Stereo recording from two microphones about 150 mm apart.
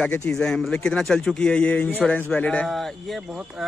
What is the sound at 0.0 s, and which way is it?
A man's voice, 10° left (ahead or behind).